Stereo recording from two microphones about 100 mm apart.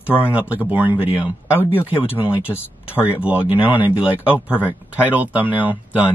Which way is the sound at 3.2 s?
15° right (ahead or behind).